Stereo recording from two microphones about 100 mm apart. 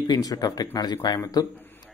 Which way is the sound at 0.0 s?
40° left (ahead or behind).